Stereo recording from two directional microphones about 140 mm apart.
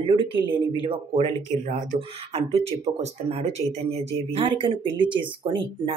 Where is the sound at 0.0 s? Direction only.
40° right (ahead or behind).